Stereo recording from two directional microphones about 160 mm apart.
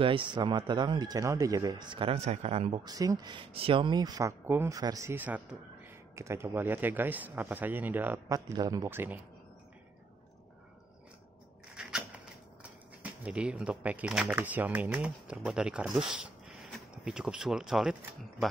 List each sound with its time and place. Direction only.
0.0 s speech: 30° right (ahead or behind); by 8.4 s 10° right (ahead or behind)
8.5 s speech: 20° right (ahead or behind)
11.7 s a sound: 5° right (ahead or behind)
13.0 s speech: 10° right (ahead or behind)